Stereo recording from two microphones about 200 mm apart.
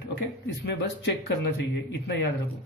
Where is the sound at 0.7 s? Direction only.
55° left (ahead or behind).